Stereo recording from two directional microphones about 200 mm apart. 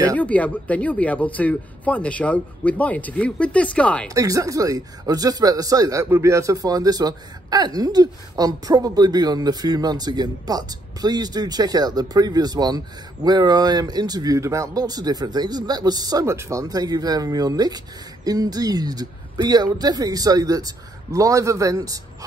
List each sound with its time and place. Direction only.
0.1 s speech: 5° left (ahead or behind)
4.1 s speech: 15° right (ahead or behind)